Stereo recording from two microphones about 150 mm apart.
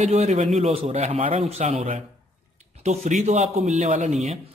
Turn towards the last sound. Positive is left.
turn(degrees=-50)  # may be behind; listen again after turning